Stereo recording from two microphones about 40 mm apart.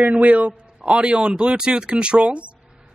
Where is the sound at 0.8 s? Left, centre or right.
Right.